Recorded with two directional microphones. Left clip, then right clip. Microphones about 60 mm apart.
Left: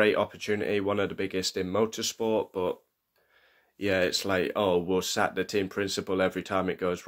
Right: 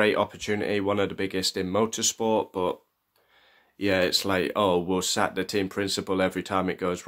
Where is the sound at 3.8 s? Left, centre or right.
Right.